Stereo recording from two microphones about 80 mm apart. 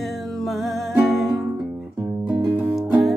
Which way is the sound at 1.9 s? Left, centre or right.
Centre.